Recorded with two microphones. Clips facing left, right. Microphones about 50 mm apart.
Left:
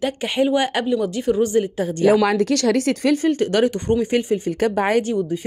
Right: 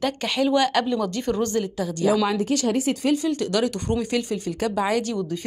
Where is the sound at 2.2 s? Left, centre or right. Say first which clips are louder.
Left 5 dB; left.